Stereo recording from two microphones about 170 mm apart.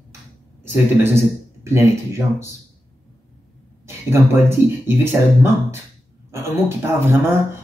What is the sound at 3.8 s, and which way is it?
Speech, 15° right (ahead or behind).